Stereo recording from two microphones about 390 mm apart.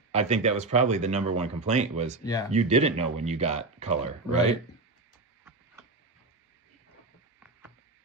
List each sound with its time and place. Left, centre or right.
0.1 s speech: centre